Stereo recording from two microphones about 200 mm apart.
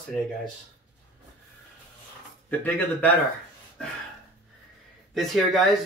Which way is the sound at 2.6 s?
10° left (ahead or behind).